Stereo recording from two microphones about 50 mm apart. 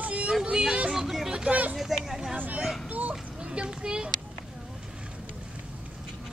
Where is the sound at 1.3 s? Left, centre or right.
Right.